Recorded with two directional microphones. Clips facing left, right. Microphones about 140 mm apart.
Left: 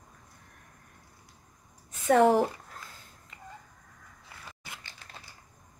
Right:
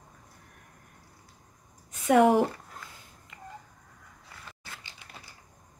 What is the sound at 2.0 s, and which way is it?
Speech, 10° right (ahead or behind).